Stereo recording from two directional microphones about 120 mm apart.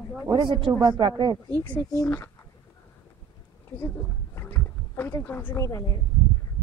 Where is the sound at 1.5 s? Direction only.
15° left (ahead or behind).